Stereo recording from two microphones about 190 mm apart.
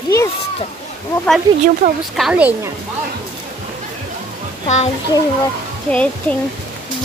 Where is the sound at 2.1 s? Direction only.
5° right (ahead or behind).